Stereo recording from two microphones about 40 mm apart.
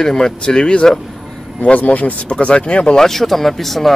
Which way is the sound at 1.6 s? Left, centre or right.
Left.